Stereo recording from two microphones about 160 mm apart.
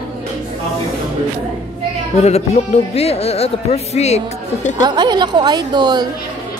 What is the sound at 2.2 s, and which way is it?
Music, 40° left (ahead or behind).